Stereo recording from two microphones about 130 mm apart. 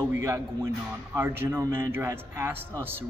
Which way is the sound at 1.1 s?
15° right (ahead or behind).